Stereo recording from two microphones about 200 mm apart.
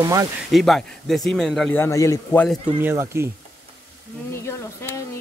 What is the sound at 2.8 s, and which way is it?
Speech, 10° right (ahead or behind).